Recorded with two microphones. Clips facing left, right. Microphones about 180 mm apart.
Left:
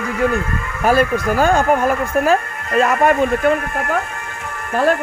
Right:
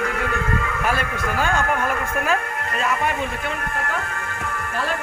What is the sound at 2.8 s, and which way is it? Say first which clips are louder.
Speech: left 10 dB; 50° left (ahead or behind).